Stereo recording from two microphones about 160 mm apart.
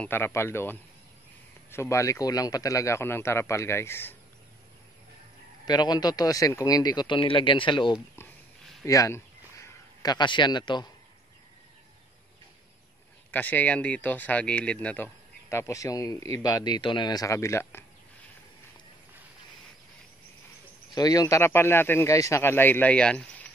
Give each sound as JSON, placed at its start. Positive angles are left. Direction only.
{"t": 0.0, "sound": "speech", "side_deg": 15}
{"t": 5.7, "sound": "speech", "side_deg": 25}
{"t": 8.8, "sound": "a man's voice", "side_deg": 20}
{"t": 13.3, "sound": "speech", "side_deg": 10}
{"t": 15.5, "sound": "speech", "side_deg": 20}
{"t": 20.9, "sound": "speech", "side_deg": 25}